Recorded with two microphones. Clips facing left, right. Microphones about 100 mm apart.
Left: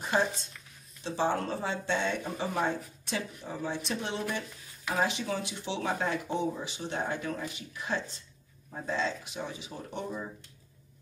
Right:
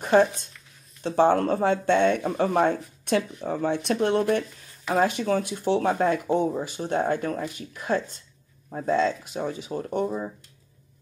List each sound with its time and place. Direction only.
0.0 s speech: 60° right (ahead or behind); by 10.3 s 40° right (ahead or behind)